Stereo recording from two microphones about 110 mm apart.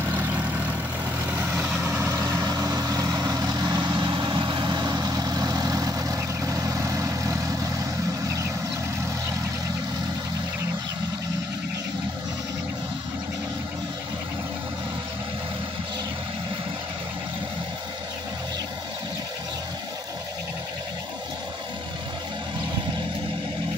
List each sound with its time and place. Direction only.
0.0 s vehicle: 15° right (ahead or behind)